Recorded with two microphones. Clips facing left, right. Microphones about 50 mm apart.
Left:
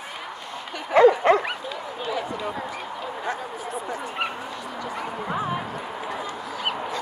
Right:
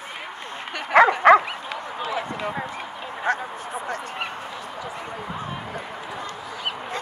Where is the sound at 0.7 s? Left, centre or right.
Right.